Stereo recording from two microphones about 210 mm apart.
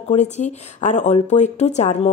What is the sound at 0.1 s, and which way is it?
Speech, 35° left (ahead or behind).